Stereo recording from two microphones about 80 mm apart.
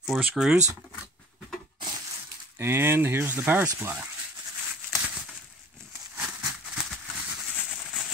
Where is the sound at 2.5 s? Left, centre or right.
Right.